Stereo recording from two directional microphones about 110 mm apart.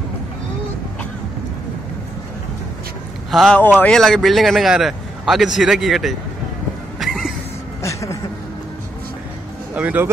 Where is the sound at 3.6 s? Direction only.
15° left (ahead or behind); by 6.2 s centre (ahead or behind).